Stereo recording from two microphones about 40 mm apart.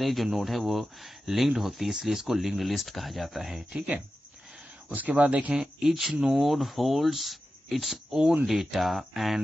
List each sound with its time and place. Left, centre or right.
0.0 s speech: centre
3.7 s speech: right
5.6 s speech: centre
8.1 s speech: centre
8.5 s speech: centre